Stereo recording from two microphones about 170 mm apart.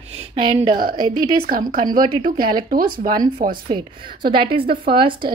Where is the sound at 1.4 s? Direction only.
60° right (ahead or behind).